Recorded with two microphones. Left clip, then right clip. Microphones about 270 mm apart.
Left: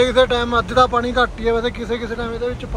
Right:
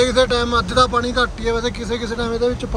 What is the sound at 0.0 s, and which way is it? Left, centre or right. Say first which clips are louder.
Speech: left 1 dB; centre.